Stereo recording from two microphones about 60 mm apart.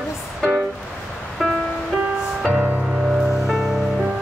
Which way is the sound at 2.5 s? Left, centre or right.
Right.